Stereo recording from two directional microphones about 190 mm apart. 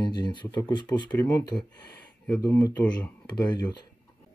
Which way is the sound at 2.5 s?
10° left (ahead or behind).